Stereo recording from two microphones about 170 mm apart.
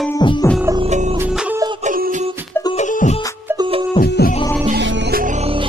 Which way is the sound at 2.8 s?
45° left (ahead or behind).